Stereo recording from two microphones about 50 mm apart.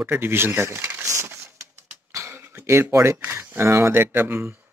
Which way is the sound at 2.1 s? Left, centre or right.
Right.